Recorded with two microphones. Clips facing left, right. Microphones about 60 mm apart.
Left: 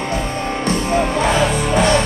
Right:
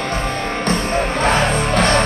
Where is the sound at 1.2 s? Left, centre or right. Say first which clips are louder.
Even; right.